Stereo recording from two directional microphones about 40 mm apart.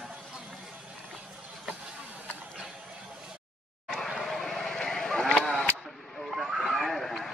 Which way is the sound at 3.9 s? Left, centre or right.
Centre.